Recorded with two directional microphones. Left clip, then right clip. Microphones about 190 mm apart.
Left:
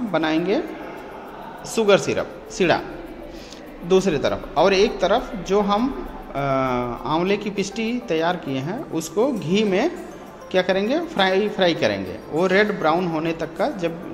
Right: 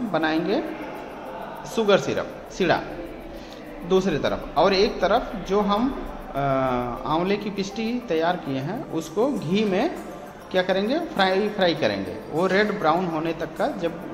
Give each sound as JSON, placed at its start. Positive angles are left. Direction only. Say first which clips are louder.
{"t": 0.1, "sound": "a woman's voice", "louder": "left 2 dB", "side_deg": 30}
{"t": 1.8, "sound": "a woman's voice", "louder": "left 3 dB", "side_deg": 30}
{"t": 3.9, "sound": "a woman's voice", "louder": "left 3 dB", "side_deg": 30}